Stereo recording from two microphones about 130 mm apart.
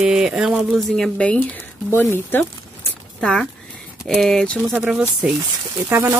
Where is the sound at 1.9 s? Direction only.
20° left (ahead or behind).